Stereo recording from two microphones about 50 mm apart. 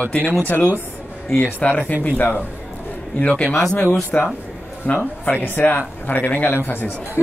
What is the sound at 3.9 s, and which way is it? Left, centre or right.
Speech, left.